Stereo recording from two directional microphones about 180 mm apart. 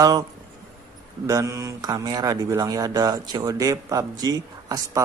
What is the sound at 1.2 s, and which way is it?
Speech, 20° right (ahead or behind).